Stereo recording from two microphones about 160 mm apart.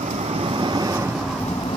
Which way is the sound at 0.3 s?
35° right (ahead or behind).